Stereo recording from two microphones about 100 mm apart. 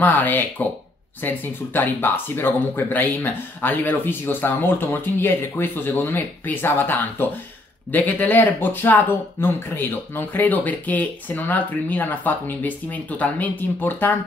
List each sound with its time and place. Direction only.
0.0 s speech: 15° left (ahead or behind)